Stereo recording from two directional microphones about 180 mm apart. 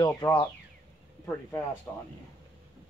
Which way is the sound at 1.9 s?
10° left (ahead or behind).